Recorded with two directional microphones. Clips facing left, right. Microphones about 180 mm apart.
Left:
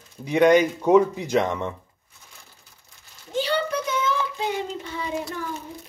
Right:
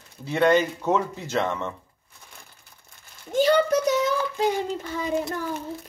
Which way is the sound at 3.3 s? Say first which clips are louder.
Right 5 dB; 45° right (ahead or behind).